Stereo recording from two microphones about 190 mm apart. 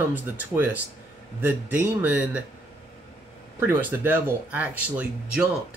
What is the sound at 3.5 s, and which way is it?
Speech, 10° right (ahead or behind).